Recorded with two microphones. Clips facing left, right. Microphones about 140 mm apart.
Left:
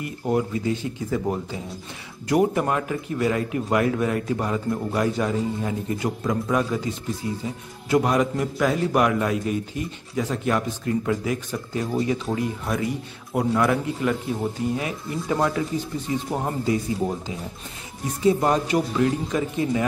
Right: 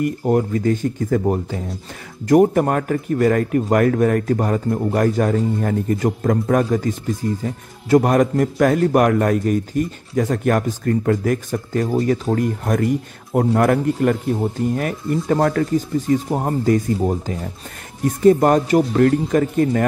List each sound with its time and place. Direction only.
0.3 s a man's voice: 45° right (ahead or behind)
2.2 s a man's voice: 45° right (ahead or behind)
18.0 s a man's voice: 50° right (ahead or behind)